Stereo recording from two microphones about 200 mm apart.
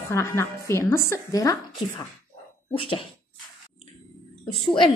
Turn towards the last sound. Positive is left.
turn(degrees=25)  # may be behind; listen again after turning